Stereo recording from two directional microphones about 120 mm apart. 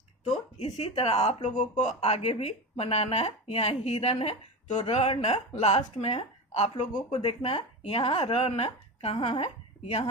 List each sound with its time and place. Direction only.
0.2 s a sound: 70° left (ahead or behind)
0.7 s a woman's voice: 55° left (ahead or behind)
6.9 s speech: 35° left (ahead or behind)
7.2 s a woman's voice: 55° left (ahead or behind)